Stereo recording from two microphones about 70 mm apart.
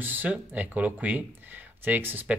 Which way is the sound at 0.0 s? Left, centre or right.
Right.